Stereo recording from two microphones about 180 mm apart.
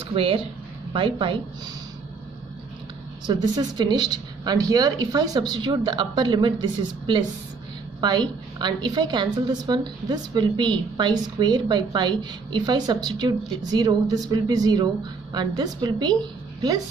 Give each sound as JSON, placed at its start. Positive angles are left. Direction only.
{"t": 0.1, "sound": "a woman's voice", "side_deg": -30}
{"t": 3.3, "sound": "a woman's voice", "side_deg": -25}